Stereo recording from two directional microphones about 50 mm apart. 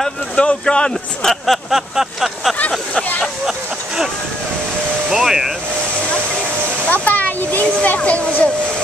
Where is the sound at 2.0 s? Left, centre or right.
Centre.